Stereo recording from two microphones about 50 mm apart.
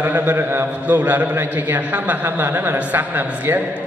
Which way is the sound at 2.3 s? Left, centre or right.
Right.